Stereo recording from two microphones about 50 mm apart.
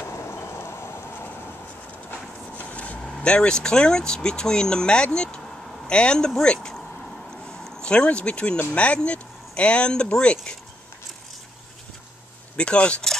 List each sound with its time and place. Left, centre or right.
0.0 s vehicle: left
2.5 s vehicle: left
3.2 s speech: left
7.4 s a sound: centre
8.7 s speech: left
12.5 s speech: left